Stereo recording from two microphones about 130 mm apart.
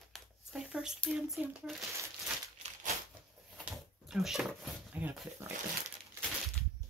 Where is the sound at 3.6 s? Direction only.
5° right (ahead or behind).